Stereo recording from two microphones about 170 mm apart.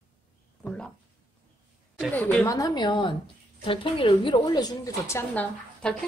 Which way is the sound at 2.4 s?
20° left (ahead or behind).